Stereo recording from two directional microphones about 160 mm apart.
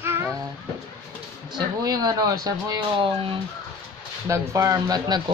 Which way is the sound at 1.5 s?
25° right (ahead or behind).